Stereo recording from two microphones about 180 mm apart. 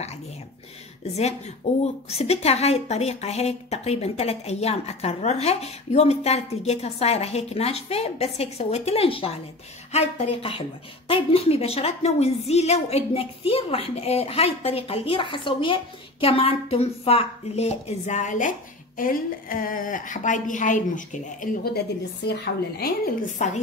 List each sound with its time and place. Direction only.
1.0 s a woman's voice: 35° left (ahead or behind)
21.7 s a woman's voice: 65° left (ahead or behind)
23.3 s a woman's voice: 40° left (ahead or behind)